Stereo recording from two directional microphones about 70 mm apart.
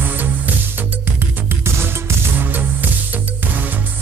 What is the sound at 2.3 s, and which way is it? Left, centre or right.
Music, right.